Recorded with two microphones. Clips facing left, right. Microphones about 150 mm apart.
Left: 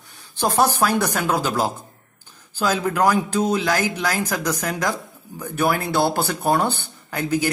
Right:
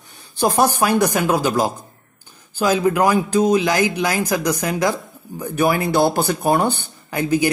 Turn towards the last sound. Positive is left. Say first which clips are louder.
# right 4 dB
turn(degrees=-15)  # may be behind; listen again after turning